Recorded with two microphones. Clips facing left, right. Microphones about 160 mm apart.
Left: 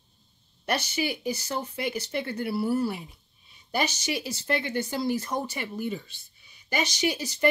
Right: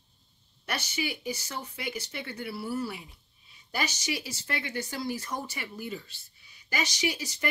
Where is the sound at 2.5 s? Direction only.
55° left (ahead or behind).